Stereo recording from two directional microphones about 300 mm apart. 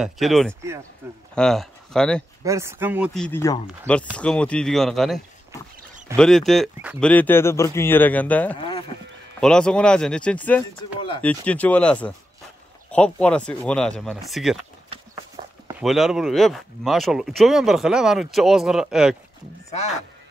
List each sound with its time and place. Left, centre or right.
0.0 s speech: centre
2.4 s speech: centre
3.3 s speech: centre
8.5 s speech: centre
9.4 s speech: centre
14.9 s walk: centre
15.8 s speech: centre